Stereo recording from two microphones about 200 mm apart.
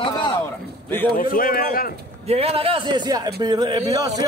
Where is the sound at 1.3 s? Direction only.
45° left (ahead or behind).